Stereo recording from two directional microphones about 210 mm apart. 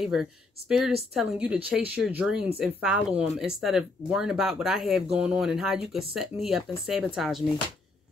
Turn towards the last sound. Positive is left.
turn(degrees=0)  # may be behind; listen again after turning